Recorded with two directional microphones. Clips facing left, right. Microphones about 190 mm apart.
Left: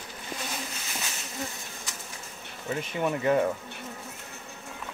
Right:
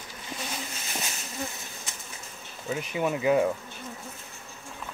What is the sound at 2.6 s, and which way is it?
Speech, 5° right (ahead or behind).